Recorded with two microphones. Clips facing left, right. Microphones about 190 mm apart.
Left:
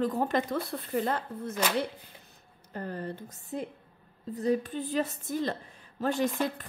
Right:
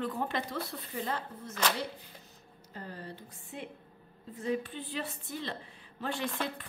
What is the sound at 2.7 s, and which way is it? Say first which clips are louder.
A woman's voice: left 8 dB; 55° left (ahead or behind).